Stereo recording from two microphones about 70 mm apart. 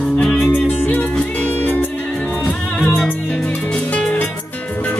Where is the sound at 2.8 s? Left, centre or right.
Left.